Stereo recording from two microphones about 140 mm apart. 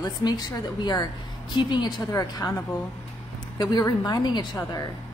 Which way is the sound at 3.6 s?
30° left (ahead or behind).